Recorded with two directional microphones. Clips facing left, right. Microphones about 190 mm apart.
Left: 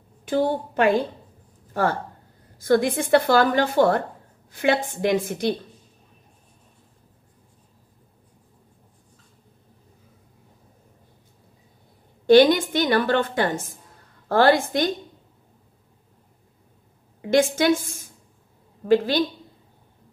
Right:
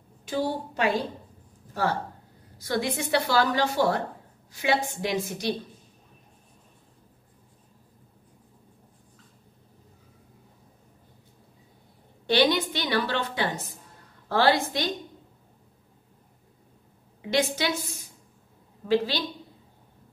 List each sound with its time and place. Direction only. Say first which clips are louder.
0.2 s a woman's voice: left 6 dB; 55° left (ahead or behind)
12.3 s a woman's voice: left 9 dB; 45° left (ahead or behind)
17.2 s a woman's voice: left 7 dB; 50° left (ahead or behind)